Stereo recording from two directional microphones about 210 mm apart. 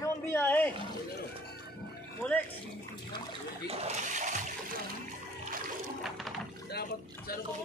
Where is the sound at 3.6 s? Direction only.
30° right (ahead or behind).